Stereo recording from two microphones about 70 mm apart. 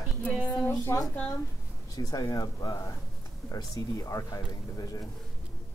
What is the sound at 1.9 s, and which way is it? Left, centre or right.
Speech, left.